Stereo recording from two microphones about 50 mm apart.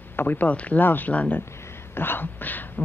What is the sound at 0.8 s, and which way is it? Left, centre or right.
Speech, left.